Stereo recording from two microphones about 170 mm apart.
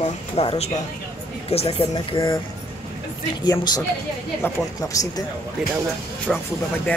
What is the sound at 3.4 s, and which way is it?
Speech, 20° left (ahead or behind).